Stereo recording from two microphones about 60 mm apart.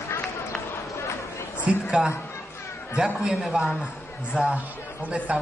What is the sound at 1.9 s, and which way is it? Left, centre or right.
Speech, centre.